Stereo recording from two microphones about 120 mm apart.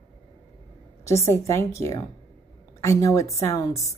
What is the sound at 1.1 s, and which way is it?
A woman's voice, 25° left (ahead or behind).